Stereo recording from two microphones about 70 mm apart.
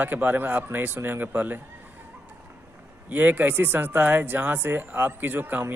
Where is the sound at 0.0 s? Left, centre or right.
Right.